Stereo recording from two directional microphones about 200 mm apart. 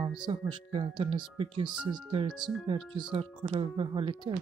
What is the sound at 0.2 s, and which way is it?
Speech, 25° right (ahead or behind).